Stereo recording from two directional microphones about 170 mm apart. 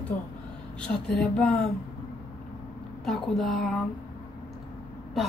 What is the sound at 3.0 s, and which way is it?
Speech, centre (ahead or behind).